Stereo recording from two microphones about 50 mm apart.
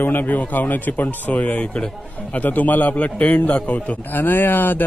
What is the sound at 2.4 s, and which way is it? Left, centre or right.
Speech, left.